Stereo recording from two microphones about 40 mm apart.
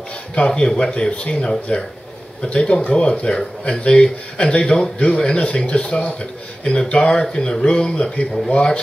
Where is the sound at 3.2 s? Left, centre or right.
Left.